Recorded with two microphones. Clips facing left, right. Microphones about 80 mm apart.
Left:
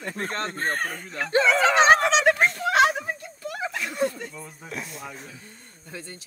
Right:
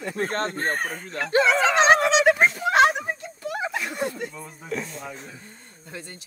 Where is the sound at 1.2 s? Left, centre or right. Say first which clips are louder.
Right 1 dB; centre.